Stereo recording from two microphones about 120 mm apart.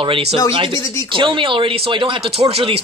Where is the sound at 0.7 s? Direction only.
30° left (ahead or behind).